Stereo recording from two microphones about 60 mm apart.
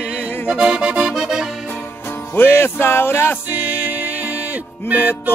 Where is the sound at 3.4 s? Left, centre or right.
Right.